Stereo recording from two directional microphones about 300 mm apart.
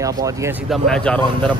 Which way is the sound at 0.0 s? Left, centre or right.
Centre.